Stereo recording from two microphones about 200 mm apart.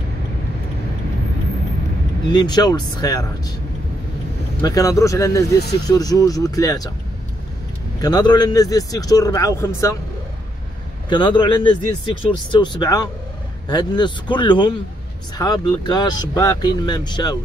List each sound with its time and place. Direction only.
2.2 s speech: 20° left (ahead or behind)
4.6 s a man's voice: 15° left (ahead or behind)
8.0 s a man's voice: 20° left (ahead or behind)
11.1 s speech: 20° left (ahead or behind)